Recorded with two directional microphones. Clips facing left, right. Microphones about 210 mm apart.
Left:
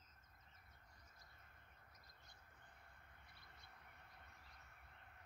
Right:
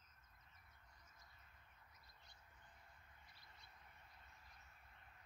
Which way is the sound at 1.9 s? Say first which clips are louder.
Left 1 dB; 45° left (ahead or behind).